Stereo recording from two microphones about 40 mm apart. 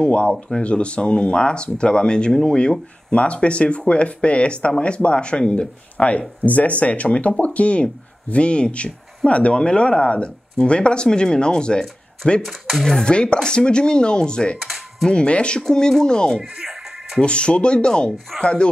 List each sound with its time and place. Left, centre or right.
0.0 s speech: left
12.4 s speech: centre
13.0 s speech: left
14.6 s music: centre
15.0 s speech: left
15.7 s speech: centre
16.5 s music: centre
17.2 s speech: left